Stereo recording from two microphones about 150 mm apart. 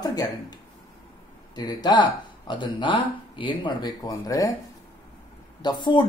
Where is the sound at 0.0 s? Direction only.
25° left (ahead or behind).